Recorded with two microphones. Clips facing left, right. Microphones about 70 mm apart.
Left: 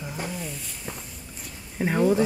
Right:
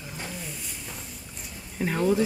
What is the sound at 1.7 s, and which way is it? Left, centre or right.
Speech, centre.